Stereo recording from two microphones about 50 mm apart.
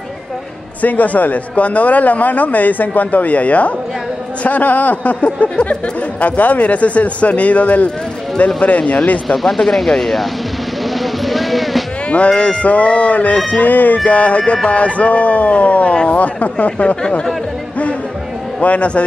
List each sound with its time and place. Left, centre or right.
0.8 s speech: left
4.4 s music: left
9.3 s speech: centre
11.0 s music: centre
12.1 s music: left
18.6 s music: left